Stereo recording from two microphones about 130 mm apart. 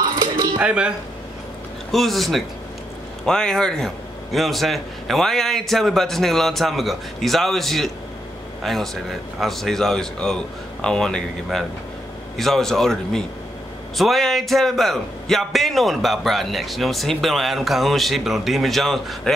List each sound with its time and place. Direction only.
0.0 s music: 35° right (ahead or behind)
0.6 s a man's voice: 5° right (ahead or behind)